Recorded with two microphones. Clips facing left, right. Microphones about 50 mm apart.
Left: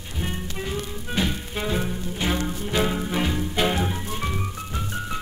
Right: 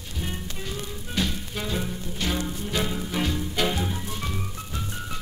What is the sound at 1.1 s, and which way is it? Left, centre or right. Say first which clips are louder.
Music: left 3 dB; centre.